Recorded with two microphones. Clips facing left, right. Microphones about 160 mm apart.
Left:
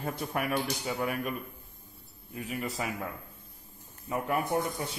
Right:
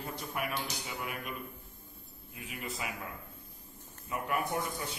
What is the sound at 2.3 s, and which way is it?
Speech, 40° left (ahead or behind).